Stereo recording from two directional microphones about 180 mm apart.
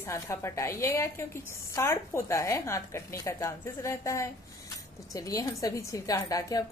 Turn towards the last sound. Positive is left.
turn(degrees=20)  # may be behind; listen again after turning